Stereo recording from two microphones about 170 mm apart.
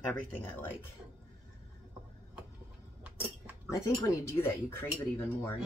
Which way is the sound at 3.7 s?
15° left (ahead or behind).